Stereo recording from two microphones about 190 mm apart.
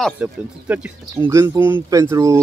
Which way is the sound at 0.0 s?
5° right (ahead or behind).